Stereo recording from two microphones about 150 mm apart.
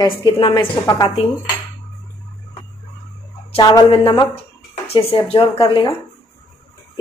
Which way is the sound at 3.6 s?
30° left (ahead or behind).